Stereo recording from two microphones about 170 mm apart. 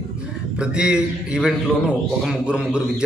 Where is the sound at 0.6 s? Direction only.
5° right (ahead or behind).